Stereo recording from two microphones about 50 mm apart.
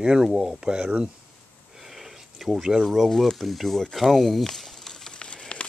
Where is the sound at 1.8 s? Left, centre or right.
Centre.